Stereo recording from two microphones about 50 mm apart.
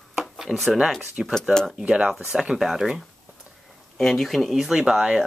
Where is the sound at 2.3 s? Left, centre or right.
Centre.